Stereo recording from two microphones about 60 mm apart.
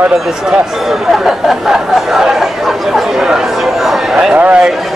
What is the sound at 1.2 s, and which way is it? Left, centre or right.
Speech, centre.